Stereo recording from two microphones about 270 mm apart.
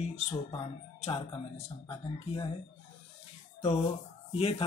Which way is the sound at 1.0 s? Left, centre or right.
Left.